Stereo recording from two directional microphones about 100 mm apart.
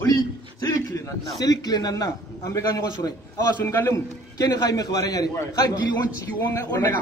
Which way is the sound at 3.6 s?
25° left (ahead or behind).